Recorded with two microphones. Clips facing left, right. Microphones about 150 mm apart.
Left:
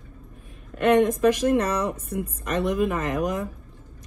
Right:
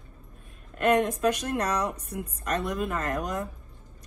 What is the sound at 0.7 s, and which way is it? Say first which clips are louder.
A woman's voice: left 4 dB; centre (ahead or behind).